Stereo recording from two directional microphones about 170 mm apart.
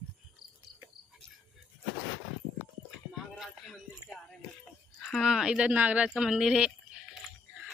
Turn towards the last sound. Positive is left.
turn(degrees=-5)  # may be behind; listen again after turning